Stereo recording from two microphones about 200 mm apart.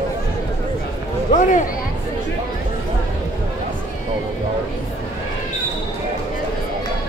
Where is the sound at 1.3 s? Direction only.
40° left (ahead or behind).